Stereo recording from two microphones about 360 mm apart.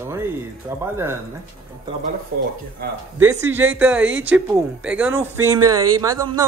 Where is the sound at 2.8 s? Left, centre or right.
Right.